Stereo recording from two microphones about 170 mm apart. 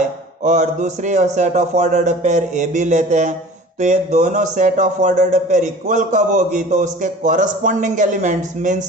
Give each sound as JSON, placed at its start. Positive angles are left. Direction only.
{"t": 0.4, "sound": "speech", "side_deg": -45}